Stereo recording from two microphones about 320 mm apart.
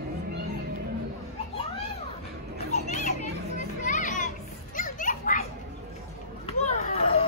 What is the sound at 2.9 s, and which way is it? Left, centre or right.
Children playing, left.